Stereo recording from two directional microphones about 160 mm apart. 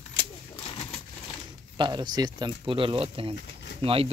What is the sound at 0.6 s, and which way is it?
Bird, 35° left (ahead or behind).